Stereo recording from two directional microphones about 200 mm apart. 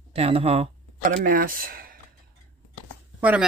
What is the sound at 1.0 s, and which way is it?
Speech, 45° right (ahead or behind).